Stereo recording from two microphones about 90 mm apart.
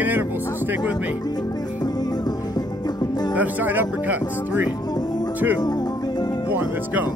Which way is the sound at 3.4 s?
20° right (ahead or behind).